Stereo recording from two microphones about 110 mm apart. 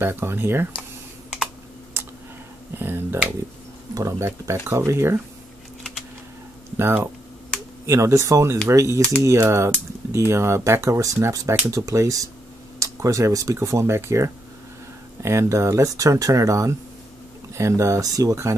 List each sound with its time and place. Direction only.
0.0 s speech: 20° right (ahead or behind)
2.7 s speech: 20° right (ahead or behind)
6.8 s speech: 20° right (ahead or behind)